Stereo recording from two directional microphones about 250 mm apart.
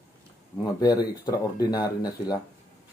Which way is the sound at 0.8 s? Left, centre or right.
Centre.